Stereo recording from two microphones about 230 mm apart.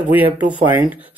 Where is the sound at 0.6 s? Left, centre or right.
Centre.